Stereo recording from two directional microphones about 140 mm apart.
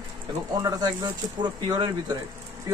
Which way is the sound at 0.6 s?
25° right (ahead or behind).